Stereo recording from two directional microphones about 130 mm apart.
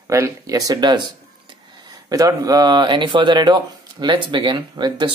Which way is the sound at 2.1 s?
25° right (ahead or behind).